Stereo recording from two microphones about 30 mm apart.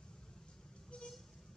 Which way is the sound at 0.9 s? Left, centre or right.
Left.